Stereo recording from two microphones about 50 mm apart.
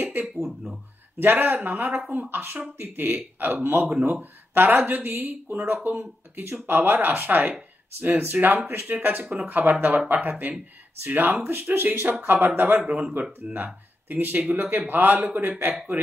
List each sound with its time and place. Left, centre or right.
0.0 s a sound: right
0.4 s speech: centre
1.2 s speech: right
5.9 s speech: right
12.8 s speech: right
13.2 s speech: right
15.9 s speech: right